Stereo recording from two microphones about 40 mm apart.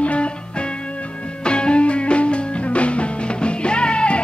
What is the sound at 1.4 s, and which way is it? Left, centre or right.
Music, left.